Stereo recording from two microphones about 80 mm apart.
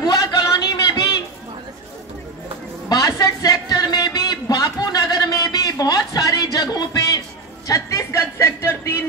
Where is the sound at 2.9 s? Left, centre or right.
Left.